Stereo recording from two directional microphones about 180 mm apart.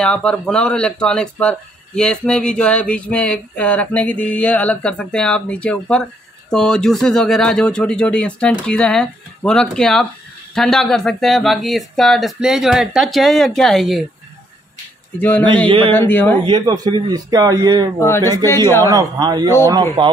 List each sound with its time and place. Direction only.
0.0 s speech: 5° left (ahead or behind)
15.1 s speech: 10° left (ahead or behind)
16.4 s a man's voice: 25° right (ahead or behind)
17.9 s speech: 15° left (ahead or behind)
18.9 s a man's voice: 20° right (ahead or behind)